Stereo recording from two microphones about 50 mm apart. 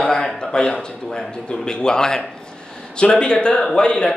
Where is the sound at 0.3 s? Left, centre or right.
Centre.